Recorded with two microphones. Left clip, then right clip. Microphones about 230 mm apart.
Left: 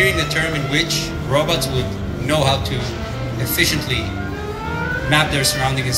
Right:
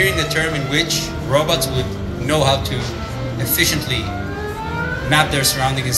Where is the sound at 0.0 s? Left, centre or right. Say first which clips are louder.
Even; right.